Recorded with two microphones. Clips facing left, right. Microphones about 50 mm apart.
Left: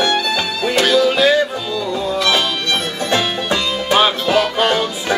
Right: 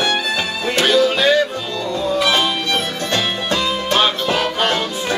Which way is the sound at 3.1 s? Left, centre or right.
Centre.